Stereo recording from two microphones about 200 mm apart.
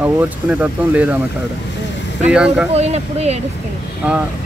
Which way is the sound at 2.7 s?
30° right (ahead or behind).